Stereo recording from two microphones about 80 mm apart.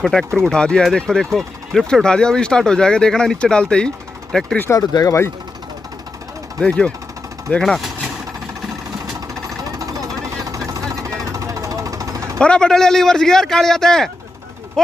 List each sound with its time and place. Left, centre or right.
0.0 s speech: centre
4.6 s speech: left
6.6 s speech: centre
9.3 s vehicle: right
12.4 s speech: centre